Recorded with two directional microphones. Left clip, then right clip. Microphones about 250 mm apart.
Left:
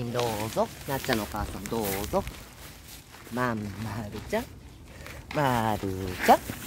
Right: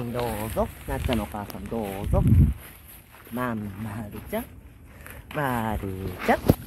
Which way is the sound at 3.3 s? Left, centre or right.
Centre.